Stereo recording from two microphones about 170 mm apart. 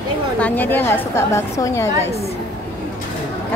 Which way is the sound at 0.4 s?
10° left (ahead or behind).